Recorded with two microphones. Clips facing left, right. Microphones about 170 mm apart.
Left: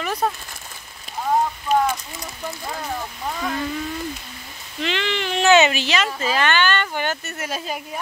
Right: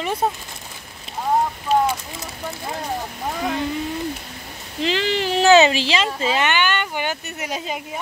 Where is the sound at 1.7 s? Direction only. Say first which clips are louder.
Right 1 dB; 30° right (ahead or behind).